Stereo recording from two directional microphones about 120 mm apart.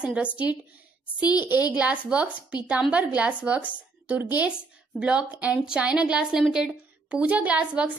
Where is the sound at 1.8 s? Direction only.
10° right (ahead or behind).